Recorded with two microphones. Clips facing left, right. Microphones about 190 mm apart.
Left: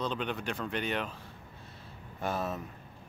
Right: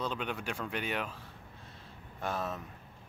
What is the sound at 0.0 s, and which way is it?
Speech, 5° right (ahead or behind).